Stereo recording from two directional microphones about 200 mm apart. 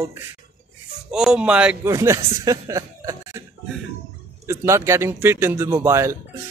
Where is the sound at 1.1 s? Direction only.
5° right (ahead or behind).